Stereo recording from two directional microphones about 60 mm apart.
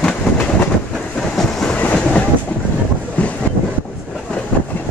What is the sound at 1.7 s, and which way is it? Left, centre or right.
Train, left.